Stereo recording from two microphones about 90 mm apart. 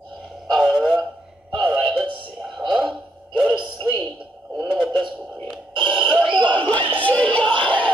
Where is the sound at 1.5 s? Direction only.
60° right (ahead or behind).